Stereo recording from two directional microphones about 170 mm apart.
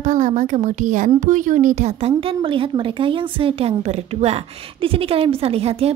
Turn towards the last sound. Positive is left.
turn(degrees=-35)  # may be behind; listen again after turning